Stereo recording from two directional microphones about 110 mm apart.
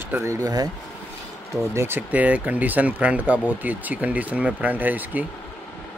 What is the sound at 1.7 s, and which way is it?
Speech, 20° right (ahead or behind).